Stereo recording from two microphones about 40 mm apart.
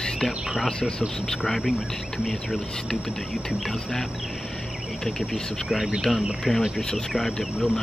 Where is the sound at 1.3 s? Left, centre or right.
Centre.